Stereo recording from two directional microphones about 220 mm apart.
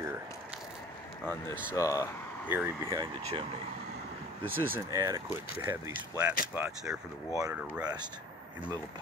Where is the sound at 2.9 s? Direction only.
25° right (ahead or behind).